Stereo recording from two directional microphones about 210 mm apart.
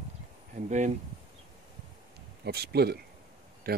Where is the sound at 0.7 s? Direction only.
35° right (ahead or behind).